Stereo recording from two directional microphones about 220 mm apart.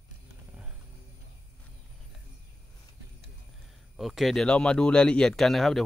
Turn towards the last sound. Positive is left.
turn(degrees=0)  # may be behind; listen again after turning